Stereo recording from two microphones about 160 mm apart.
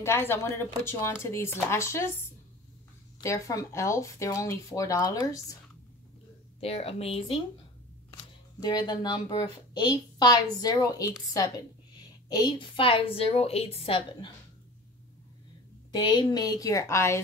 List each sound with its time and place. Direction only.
0.0 s speech: 15° left (ahead or behind)
3.2 s speech: 20° left (ahead or behind)
6.6 s a woman's voice: 40° left (ahead or behind)
8.1 s a woman's voice: 25° left (ahead or behind)
15.9 s speech: 25° left (ahead or behind)